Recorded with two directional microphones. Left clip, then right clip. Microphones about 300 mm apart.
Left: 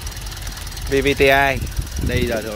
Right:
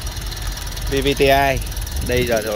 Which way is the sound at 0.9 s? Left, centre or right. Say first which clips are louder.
Left 1 dB; centre.